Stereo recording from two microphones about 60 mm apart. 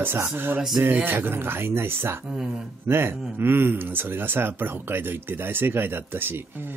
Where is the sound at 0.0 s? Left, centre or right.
Right.